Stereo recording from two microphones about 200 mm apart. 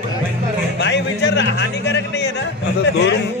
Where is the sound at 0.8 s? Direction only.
60° left (ahead or behind).